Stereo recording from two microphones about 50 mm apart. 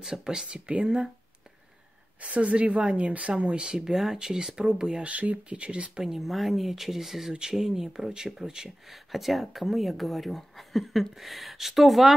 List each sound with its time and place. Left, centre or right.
0.0 s speech: centre
2.1 s speech: right
3.9 s speech: centre
5.0 s speech: right
6.0 s speech: centre